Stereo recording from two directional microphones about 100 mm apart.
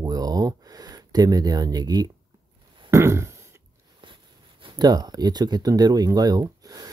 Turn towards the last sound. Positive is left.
turn(degrees=-40)  # may be behind; listen again after turning